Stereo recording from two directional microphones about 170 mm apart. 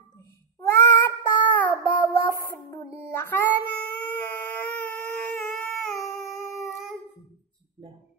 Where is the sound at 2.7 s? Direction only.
15° left (ahead or behind).